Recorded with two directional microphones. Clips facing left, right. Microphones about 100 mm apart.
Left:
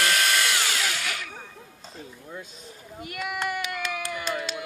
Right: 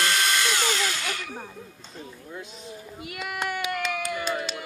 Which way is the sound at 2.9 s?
Centre (ahead or behind).